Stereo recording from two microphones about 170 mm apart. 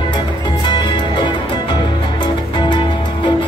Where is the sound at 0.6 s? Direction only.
30° left (ahead or behind).